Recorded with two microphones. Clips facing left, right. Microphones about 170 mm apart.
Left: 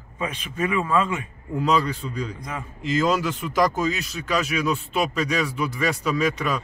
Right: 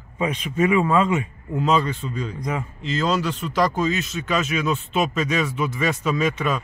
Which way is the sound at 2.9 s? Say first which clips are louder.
Left 1 dB; 10° left (ahead or behind).